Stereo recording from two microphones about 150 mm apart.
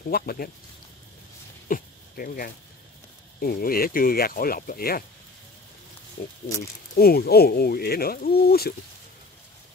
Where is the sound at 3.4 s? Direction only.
80° left.